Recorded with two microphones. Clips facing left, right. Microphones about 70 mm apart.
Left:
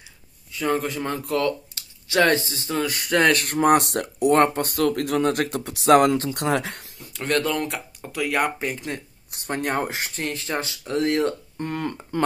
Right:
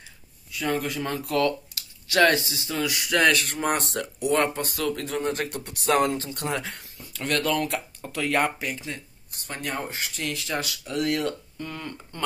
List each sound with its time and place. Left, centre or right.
0.5 s speech: left
1.7 s a sound: left
2.0 s speech: left
3.3 s speech: left
4.0 s speech: left
7.1 s speech: left
8.5 s speech: left
11.5 s speech: left
11.8 s speech: left